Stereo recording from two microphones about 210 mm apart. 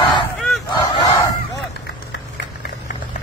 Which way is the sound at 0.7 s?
25° left (ahead or behind).